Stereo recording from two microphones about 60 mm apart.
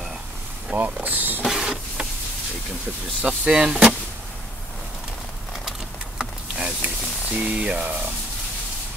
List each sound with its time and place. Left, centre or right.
0.7 s speech: right
1.4 s printer: centre
3.2 s speech: centre
6.5 s a sound: centre